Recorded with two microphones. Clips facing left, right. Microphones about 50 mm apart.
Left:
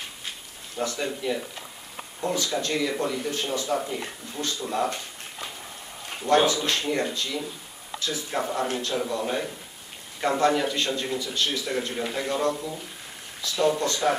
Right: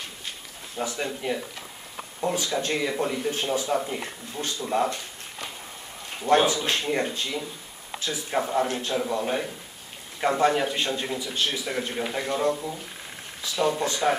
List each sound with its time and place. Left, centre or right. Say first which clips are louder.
0.7 s speech: left 1 dB; centre
2.6 s speech: even; right
6.2 s speech: even; centre